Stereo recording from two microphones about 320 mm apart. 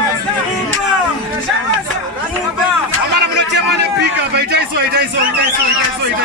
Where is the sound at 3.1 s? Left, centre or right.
Right.